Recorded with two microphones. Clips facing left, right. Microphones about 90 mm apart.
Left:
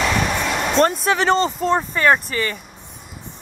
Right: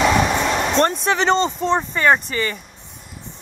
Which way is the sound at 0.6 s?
5° left (ahead or behind).